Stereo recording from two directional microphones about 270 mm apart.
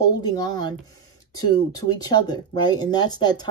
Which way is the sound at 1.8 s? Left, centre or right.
Centre.